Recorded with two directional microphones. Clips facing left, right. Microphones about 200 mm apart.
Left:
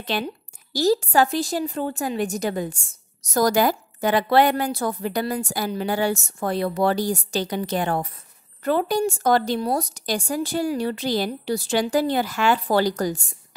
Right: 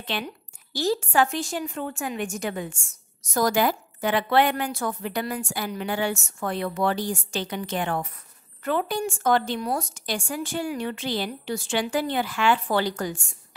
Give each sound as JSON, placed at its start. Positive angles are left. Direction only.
{"t": 0.0, "sound": "a woman's voice", "side_deg": 40}